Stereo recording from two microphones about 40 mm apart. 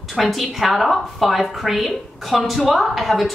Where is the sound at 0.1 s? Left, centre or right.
Centre.